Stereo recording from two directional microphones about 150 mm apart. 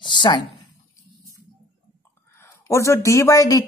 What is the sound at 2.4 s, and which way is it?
Speech, 20° left (ahead or behind).